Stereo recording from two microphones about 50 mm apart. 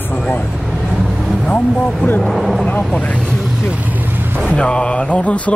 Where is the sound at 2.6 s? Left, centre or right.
Left.